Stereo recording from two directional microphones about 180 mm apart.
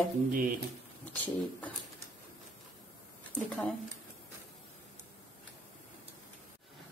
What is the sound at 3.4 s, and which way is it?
Speech, 10° left (ahead or behind).